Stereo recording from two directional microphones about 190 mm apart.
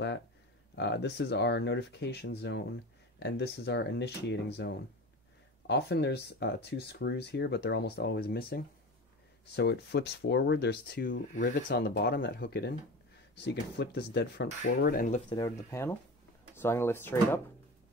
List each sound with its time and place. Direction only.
0.7 s speech: 65° left (ahead or behind)
15.1 s speech: 25° left (ahead or behind)